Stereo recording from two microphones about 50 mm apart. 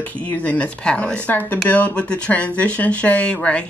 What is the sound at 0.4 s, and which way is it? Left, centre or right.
Speech, left.